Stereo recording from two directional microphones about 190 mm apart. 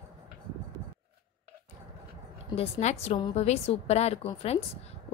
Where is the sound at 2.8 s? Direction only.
35° left (ahead or behind).